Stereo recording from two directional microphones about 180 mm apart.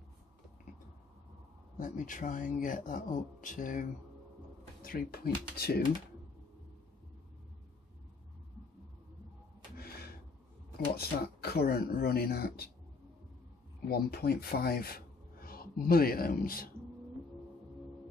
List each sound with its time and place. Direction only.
1.8 s speech: 45° left (ahead or behind)
4.8 s speech: 55° left (ahead or behind)
9.8 s gasp: 60° left (ahead or behind)
11.0 s speech: 60° left (ahead or behind)
13.8 s speech: 60° left (ahead or behind)